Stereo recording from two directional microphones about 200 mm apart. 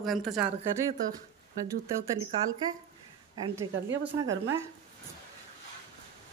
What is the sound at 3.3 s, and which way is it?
Speech, 15° right (ahead or behind).